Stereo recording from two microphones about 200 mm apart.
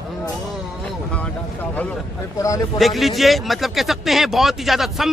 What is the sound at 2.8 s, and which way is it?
A man's voice, centre (ahead or behind).